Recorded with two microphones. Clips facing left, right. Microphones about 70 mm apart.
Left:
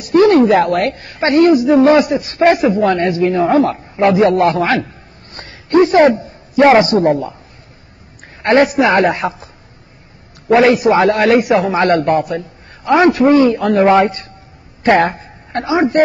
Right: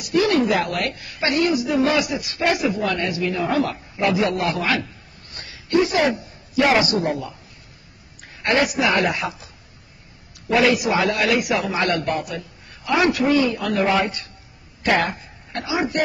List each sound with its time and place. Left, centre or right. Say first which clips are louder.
0.0 s a woman's voice: left 9 dB; left
5.3 s a sound: left 7 dB; left
8.4 s a woman's voice: left 9 dB; left
10.5 s a woman's voice: left 8 dB; left